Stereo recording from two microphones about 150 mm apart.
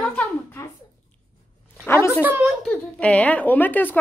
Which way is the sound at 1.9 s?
15° left (ahead or behind).